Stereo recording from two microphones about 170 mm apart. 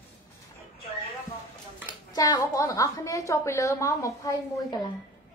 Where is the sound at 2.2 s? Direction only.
20° left (ahead or behind).